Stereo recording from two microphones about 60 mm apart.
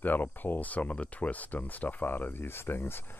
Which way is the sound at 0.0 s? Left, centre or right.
Left.